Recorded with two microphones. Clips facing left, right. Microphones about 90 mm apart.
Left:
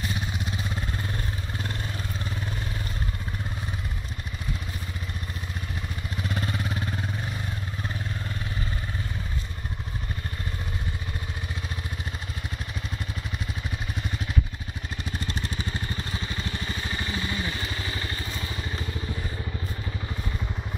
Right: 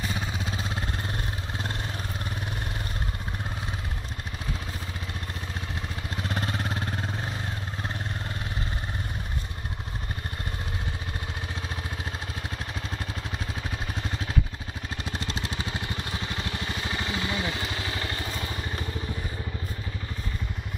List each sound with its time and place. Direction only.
0.6 s vehicle: 25° right (ahead or behind)
6.2 s vehicle: 35° right (ahead or behind)
15.0 s vehicle: 90° right; by 18.9 s 50° right (ahead or behind)